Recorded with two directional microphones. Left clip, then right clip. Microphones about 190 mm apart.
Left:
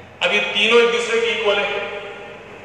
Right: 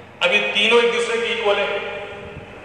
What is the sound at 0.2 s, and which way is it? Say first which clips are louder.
Speech: even; 30° right (ahead or behind).